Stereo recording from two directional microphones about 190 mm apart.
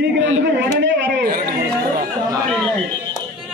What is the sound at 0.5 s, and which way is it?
Chatter, 70° right (ahead or behind).